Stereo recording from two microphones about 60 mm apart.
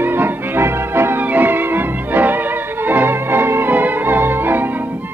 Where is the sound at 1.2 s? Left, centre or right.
Right.